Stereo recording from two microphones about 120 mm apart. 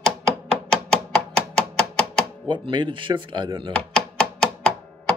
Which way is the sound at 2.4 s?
40° right (ahead or behind).